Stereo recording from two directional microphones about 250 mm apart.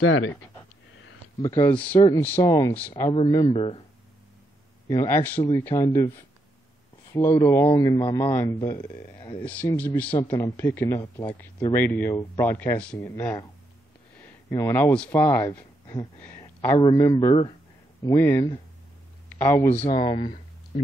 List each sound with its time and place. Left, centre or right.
0.0 s speech: left
1.4 s speech: centre
4.8 s speech: centre
12.5 s speech: centre
14.5 s speech: centre
19.7 s speech: left